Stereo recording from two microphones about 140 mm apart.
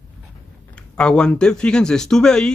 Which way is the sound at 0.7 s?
5° left (ahead or behind).